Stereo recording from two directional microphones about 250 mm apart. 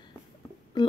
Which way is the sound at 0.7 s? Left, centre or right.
Centre.